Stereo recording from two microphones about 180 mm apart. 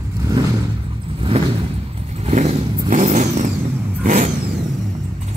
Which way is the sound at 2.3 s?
45° right (ahead or behind).